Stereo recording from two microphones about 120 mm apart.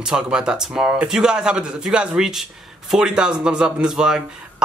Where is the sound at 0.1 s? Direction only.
5° right (ahead or behind).